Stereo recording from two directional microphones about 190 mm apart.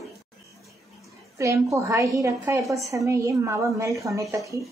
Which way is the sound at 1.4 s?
15° right (ahead or behind).